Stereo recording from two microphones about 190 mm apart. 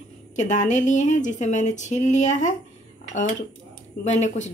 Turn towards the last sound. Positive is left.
turn(degrees=40)  # may be behind; listen again after turning